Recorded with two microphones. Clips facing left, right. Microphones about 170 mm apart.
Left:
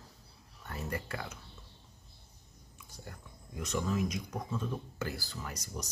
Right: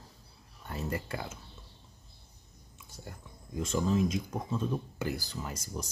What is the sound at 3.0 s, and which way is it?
Speech, 25° right (ahead or behind).